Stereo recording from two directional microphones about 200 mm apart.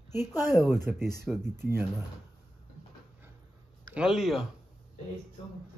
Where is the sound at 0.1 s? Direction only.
10° right (ahead or behind).